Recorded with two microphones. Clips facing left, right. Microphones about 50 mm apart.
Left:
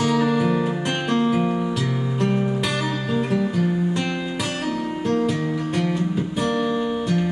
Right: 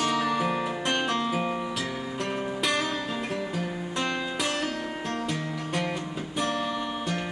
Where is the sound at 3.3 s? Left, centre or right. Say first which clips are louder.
Left 9 dB; centre.